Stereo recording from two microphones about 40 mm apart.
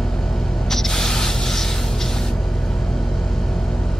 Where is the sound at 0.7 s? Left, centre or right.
Centre.